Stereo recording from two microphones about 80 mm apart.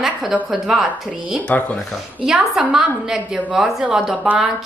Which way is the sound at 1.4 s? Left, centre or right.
Centre.